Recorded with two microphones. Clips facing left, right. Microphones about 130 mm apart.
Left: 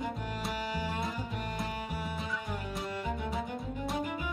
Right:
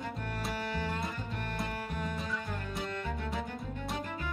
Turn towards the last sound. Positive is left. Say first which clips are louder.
# left 4 dB
turn(degrees=5)  # may be behind; listen again after turning